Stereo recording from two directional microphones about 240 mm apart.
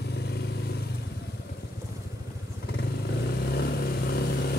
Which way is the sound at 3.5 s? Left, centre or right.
Left.